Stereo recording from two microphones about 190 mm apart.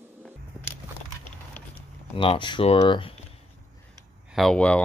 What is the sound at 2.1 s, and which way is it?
Speech, 25° left (ahead or behind).